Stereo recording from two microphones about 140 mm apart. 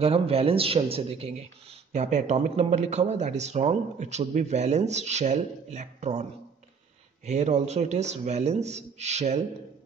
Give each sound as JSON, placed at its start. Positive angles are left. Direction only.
{"t": 0.0, "sound": "speech", "side_deg": -45}
{"t": 7.2, "sound": "a man's voice", "side_deg": -55}